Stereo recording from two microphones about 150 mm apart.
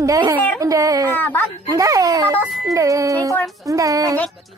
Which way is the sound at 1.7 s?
20° right (ahead or behind).